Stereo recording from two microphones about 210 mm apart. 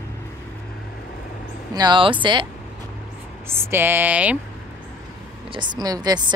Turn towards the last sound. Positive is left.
turn(degrees=-20)  # may be behind; listen again after turning